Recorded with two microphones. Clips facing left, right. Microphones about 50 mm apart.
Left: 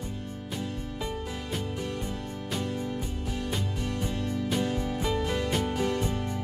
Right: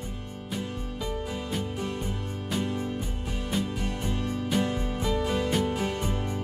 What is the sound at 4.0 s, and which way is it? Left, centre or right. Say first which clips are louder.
Music: left 1 dB; centre.